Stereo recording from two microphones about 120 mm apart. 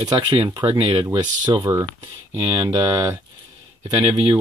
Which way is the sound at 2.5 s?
40° right (ahead or behind).